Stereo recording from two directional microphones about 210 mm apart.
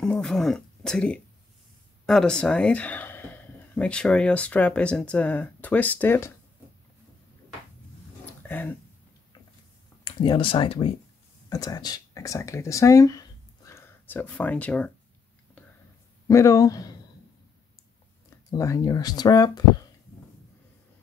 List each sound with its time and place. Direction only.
0.0 s speech: 5° left (ahead or behind)
8.4 s a sound: 10° left (ahead or behind)
10.0 s speech: 20° left (ahead or behind); by 14.9 s 5° left (ahead or behind)
16.3 s speech: 15° left (ahead or behind)
18.5 s speech: 15° left (ahead or behind)